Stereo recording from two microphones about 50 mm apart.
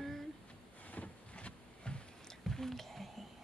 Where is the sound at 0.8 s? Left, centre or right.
Left.